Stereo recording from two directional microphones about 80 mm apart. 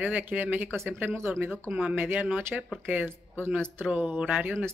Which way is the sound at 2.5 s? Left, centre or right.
Centre.